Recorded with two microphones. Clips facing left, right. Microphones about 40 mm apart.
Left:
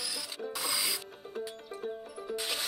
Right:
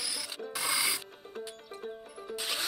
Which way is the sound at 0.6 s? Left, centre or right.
Centre.